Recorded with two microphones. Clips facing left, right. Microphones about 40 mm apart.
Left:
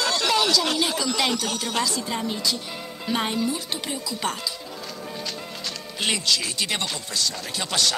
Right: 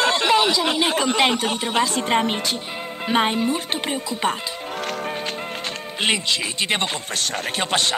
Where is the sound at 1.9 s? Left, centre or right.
Right.